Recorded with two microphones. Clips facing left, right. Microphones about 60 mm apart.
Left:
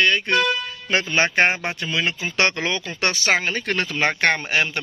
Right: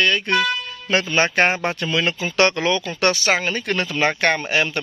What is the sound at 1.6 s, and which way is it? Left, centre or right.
Speech, centre.